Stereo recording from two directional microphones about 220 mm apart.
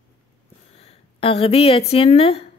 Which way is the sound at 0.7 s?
25° left (ahead or behind).